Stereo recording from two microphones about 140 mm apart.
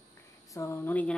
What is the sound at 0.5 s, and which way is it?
Speech, 20° left (ahead or behind).